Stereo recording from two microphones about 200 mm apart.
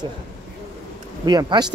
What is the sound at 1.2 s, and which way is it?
Speech, 20° right (ahead or behind).